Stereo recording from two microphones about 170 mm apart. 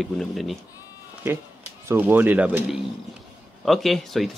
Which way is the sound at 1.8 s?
10° right (ahead or behind).